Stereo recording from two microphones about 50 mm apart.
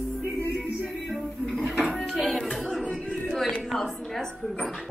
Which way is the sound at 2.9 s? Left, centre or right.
Centre.